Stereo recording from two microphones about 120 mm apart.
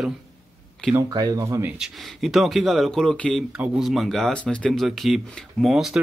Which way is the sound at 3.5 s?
5° right (ahead or behind).